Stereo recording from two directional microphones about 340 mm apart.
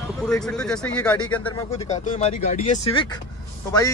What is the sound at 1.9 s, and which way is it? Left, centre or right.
Speech, left.